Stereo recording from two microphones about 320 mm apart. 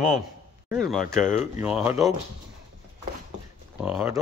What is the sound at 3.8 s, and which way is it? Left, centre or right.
Speech, centre.